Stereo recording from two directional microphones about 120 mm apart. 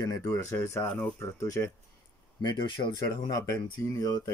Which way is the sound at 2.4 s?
40° left (ahead or behind).